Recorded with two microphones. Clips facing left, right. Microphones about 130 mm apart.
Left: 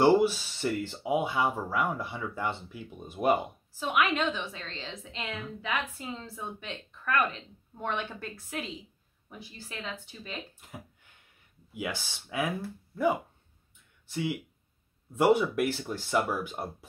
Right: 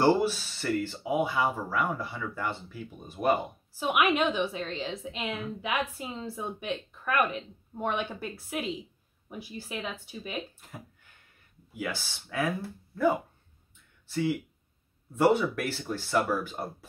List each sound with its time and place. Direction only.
0.0 s speech: 20° left (ahead or behind)
3.8 s a woman's voice: 15° right (ahead or behind)
11.7 s speech: 15° left (ahead or behind)
14.0 s speech: 15° left (ahead or behind)